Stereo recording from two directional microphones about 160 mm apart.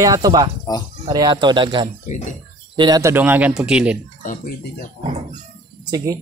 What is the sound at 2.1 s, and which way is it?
Speech, 50° left (ahead or behind).